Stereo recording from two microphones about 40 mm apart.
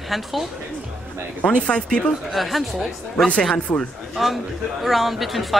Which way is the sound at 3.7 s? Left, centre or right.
Left.